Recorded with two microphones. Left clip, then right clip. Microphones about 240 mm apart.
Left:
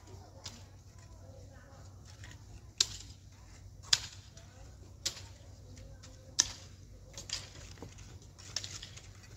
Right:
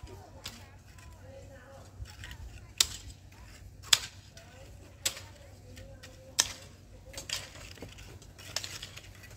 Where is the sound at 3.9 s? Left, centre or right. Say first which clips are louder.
Right 4 dB; right.